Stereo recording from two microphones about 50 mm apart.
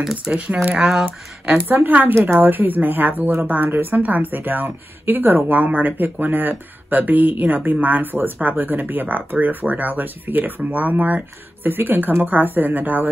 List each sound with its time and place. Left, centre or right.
0.2 s speech: right
0.7 s speech: centre
1.7 s speech: right